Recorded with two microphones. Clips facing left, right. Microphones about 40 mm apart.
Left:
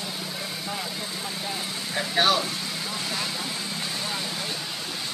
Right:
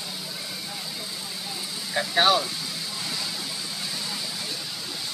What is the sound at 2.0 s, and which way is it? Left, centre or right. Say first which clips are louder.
Vehicle: right 2 dB; centre.